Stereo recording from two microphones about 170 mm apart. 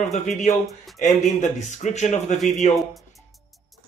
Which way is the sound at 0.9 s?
45° left (ahead or behind).